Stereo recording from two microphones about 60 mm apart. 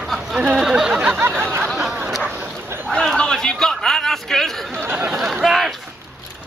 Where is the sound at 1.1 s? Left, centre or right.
Right.